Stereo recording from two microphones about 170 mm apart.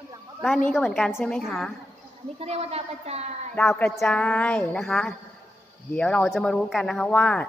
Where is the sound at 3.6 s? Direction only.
10° left (ahead or behind).